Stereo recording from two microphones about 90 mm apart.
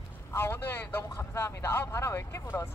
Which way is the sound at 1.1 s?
35° left (ahead or behind).